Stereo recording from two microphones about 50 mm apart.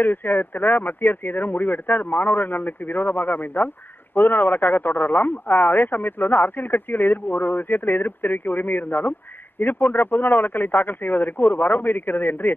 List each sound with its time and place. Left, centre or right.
0.0 s speech: left